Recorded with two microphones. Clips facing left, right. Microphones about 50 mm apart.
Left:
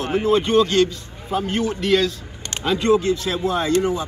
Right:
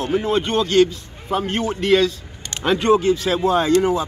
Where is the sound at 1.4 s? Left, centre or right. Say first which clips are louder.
Left 1 dB; right.